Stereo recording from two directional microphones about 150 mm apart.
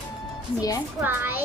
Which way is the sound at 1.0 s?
15° right (ahead or behind).